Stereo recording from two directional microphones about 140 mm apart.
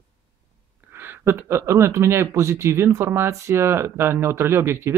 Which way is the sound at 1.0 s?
15° right (ahead or behind).